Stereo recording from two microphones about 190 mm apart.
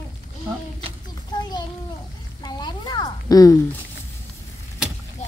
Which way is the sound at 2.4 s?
25° left (ahead or behind).